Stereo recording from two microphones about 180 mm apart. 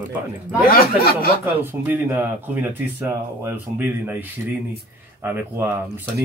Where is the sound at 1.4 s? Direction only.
10° right (ahead or behind).